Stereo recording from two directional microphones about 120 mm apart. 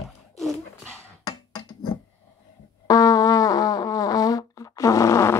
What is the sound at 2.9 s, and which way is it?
Music, 30° left (ahead or behind).